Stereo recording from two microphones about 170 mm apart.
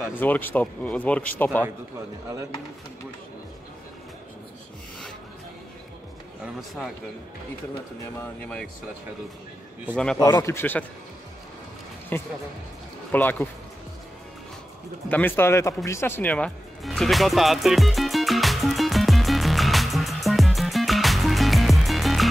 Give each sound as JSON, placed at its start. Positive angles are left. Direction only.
{"t": 0.2, "sound": "speech", "side_deg": 10}
{"t": 6.4, "sound": "speech", "side_deg": 0}
{"t": 8.2, "sound": "speech", "side_deg": 5}
{"t": 10.1, "sound": "speech", "side_deg": 25}
{"t": 12.1, "sound": "speech", "side_deg": 10}
{"t": 15.0, "sound": "music", "side_deg": 10}